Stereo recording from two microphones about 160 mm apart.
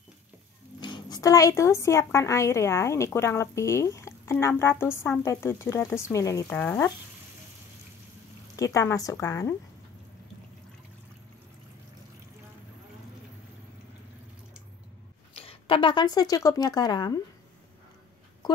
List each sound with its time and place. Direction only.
0.7 s a woman's voice: 30° left (ahead or behind); by 6.9 s 10° left (ahead or behind)
8.5 s a woman's voice: 20° left (ahead or behind)
15.3 s speech: 35° left (ahead or behind)